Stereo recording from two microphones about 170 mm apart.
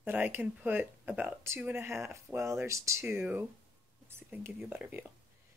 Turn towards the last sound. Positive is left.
turn(degrees=-10)  # may be behind; listen again after turning